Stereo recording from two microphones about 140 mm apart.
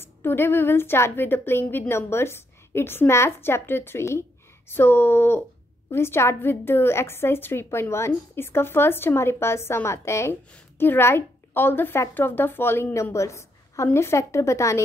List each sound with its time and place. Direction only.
0.0 s a woman's voice: 15° left (ahead or behind)